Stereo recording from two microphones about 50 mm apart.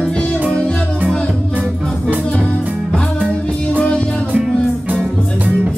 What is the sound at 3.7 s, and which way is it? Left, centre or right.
Music, left.